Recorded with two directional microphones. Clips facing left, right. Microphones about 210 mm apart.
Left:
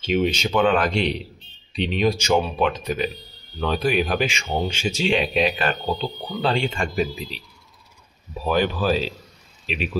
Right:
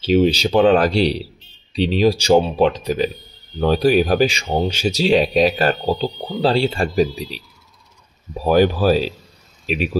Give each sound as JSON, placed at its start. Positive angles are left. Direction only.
{"t": 0.0, "sound": "speech", "side_deg": -35}
{"t": 8.5, "sound": "speech", "side_deg": -40}